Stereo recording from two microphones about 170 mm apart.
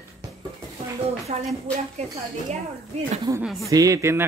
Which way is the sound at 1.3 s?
40° right (ahead or behind).